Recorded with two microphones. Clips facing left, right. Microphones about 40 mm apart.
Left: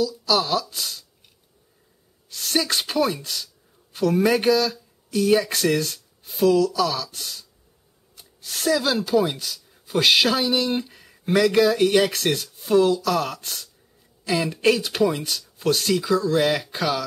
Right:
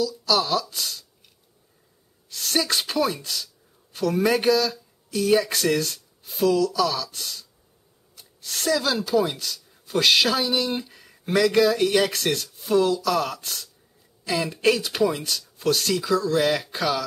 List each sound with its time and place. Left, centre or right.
0.0 s speech: centre
2.2 s speech: centre